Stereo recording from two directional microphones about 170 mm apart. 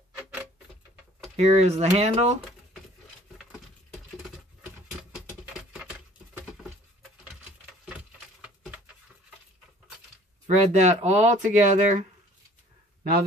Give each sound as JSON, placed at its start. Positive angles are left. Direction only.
{"t": 1.3, "sound": "speech", "side_deg": -40}
{"t": 10.4, "sound": "speech", "side_deg": -45}